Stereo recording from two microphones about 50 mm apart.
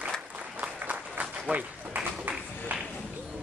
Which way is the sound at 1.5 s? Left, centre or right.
Right.